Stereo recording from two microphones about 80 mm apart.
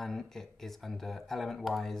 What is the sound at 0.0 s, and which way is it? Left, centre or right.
Speech, centre.